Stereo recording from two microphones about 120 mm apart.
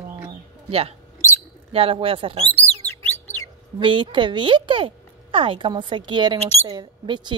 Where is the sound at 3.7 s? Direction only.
45° right (ahead or behind).